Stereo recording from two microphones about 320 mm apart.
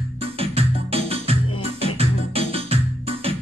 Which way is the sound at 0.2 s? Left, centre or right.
Centre.